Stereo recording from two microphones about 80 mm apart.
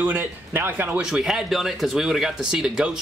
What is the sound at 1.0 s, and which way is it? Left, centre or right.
Speech, centre.